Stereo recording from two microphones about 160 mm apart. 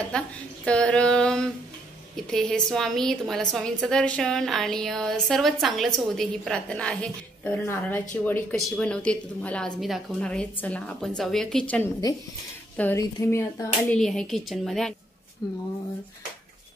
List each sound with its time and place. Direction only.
0.1 s a woman's voice: 5° left (ahead or behind)
13.9 s a woman's voice: 5° left (ahead or behind)
15.4 s speech: 20° left (ahead or behind)